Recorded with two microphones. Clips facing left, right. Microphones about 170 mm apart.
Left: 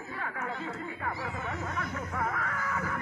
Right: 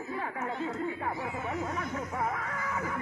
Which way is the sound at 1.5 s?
10° right (ahead or behind).